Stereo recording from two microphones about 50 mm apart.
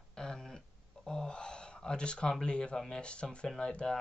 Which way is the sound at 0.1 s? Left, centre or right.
Centre.